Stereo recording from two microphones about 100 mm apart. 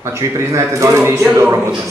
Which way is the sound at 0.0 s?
30° right (ahead or behind).